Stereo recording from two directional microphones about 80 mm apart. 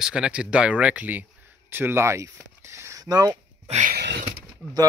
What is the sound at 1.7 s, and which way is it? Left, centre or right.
Speech, right.